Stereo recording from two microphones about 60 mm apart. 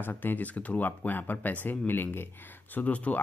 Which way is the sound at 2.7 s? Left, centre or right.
Left.